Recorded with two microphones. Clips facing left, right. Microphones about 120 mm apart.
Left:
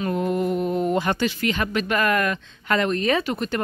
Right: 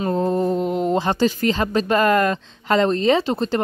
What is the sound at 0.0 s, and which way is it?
Speech, 30° right (ahead or behind).